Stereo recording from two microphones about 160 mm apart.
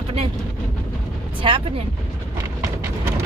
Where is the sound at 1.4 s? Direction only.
35° right (ahead or behind).